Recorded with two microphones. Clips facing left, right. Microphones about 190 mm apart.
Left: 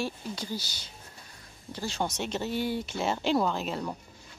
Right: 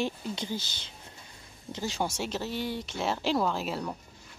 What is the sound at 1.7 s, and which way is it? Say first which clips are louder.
Speech: right 1 dB; 15° right (ahead or behind).